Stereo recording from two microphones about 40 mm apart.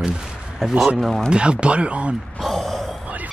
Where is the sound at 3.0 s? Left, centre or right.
Right.